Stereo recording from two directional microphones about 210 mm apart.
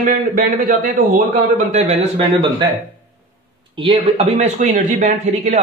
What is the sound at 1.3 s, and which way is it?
Speech, 30° right (ahead or behind).